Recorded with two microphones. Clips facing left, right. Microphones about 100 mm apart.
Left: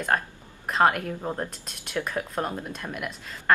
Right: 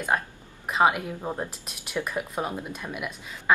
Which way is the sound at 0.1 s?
5° right (ahead or behind).